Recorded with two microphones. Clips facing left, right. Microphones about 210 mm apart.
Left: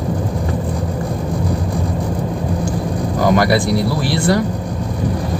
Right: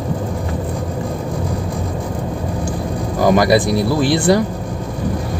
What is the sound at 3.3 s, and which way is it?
Speech, 15° right (ahead or behind).